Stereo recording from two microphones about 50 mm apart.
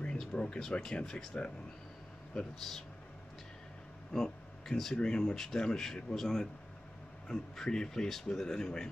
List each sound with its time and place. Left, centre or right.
0.0 s speech: centre
4.1 s speech: centre